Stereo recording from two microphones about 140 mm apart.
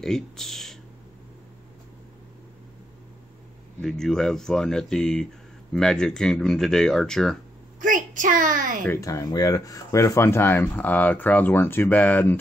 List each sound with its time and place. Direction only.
0.0 s speech: 5° left (ahead or behind)
3.8 s speech: 5° left (ahead or behind)
7.8 s a child's voice: 70° right (ahead or behind)
8.8 s speech: 20° left (ahead or behind)